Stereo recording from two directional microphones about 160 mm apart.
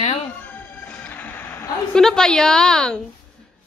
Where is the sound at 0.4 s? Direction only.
10° left (ahead or behind).